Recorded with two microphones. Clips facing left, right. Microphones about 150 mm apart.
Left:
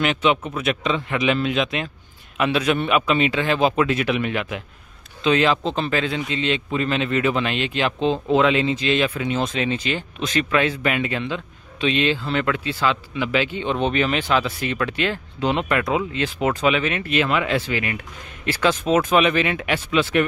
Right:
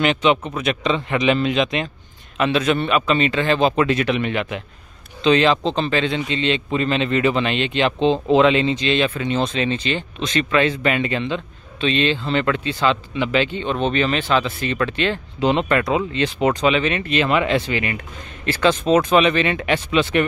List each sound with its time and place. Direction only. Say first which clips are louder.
0.0 s a man's voice: right 2 dB; 5° left (ahead or behind)